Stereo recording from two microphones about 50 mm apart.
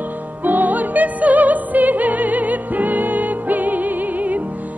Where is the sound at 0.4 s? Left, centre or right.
Right.